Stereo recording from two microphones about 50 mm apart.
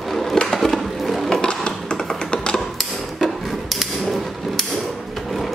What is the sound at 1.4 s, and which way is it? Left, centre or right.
Tap, centre.